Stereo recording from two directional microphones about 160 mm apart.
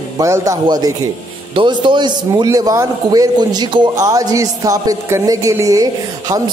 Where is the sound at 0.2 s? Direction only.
20° right (ahead or behind).